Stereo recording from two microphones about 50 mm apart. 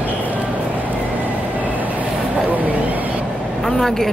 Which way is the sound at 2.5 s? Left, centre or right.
Right.